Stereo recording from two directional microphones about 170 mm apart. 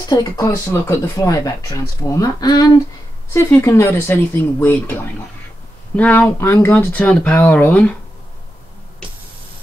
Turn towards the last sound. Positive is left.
turn(degrees=10)  # may be behind; listen again after turning